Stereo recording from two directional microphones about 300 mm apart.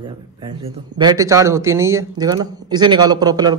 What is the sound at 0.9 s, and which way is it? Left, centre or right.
Speech, centre.